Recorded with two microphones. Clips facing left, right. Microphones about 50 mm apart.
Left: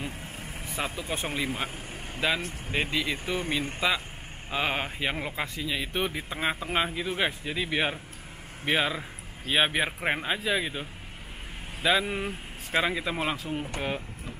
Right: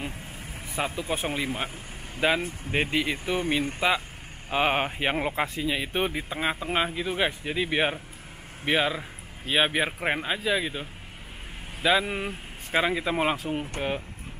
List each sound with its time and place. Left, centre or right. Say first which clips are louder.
0.5 s vehicle: left 1 dB; centre
0.7 s speech: right 3 dB; centre
2.1 s speech: right 4 dB; centre
2.7 s speech: right 2 dB; right
6.2 s speech: right 1 dB; centre